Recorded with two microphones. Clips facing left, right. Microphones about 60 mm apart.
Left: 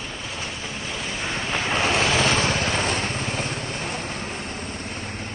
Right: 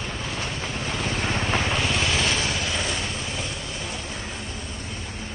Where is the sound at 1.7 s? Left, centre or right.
Left.